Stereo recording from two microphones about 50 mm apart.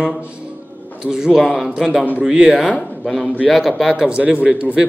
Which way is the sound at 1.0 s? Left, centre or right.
Centre.